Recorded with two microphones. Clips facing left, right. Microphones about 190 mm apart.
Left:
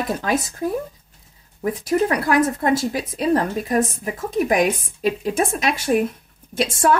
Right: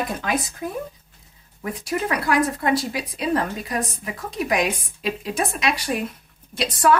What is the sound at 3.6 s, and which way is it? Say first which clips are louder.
Speech: left 7 dB; 50° left (ahead or behind).